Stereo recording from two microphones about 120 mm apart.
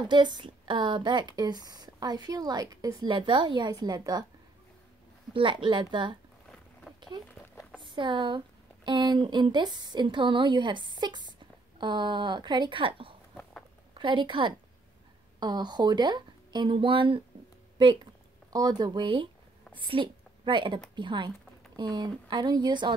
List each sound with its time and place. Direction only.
0.1 s speech: 40° right (ahead or behind)
5.3 s speech: 45° right (ahead or behind)
7.8 s speech: 40° right (ahead or behind)
13.4 s a sound: 10° left (ahead or behind)
13.9 s speech: 45° right (ahead or behind)
18.5 s a woman's voice: 35° right (ahead or behind)